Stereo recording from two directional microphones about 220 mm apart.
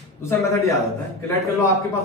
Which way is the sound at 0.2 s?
15° left (ahead or behind).